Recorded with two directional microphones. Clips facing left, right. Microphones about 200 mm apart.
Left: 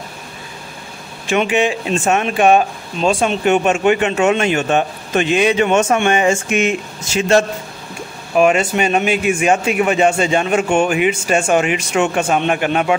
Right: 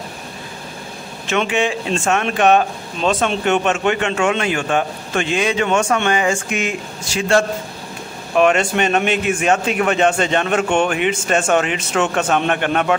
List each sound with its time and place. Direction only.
1.3 s a man's voice: 15° left (ahead or behind)
8.4 s a man's voice: 5° left (ahead or behind)